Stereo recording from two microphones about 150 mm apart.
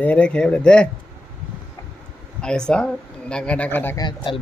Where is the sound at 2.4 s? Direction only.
5° left (ahead or behind).